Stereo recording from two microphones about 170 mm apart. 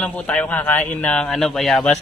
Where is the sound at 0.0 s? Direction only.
5° left (ahead or behind).